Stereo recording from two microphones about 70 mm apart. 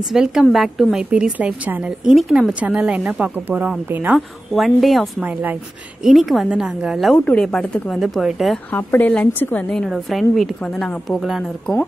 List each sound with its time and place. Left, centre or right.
0.1 s a woman's voice: centre
1.9 s a woman's voice: centre
2.6 s a woman's voice: centre
4.6 s a woman's voice: centre
5.2 s speech: right
6.0 s a woman's voice: centre
7.9 s a woman's voice: centre
8.7 s a woman's voice: left
9.6 s a woman's voice: centre
9.8 s a woman's voice: centre
10.6 s a woman's voice: centre
11.1 s a woman's voice: centre